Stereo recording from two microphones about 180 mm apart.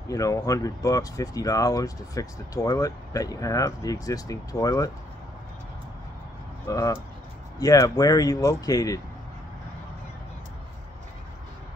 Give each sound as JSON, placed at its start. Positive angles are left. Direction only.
{"t": 0.1, "sound": "speech", "side_deg": 20}
{"t": 6.7, "sound": "speech", "side_deg": 20}